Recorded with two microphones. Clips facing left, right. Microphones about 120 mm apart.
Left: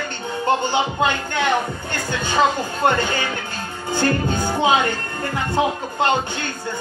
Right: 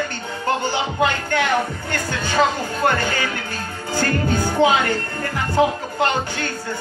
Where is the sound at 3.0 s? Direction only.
20° left (ahead or behind).